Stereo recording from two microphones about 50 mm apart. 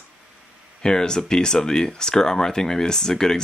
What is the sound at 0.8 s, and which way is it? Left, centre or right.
Speech, centre.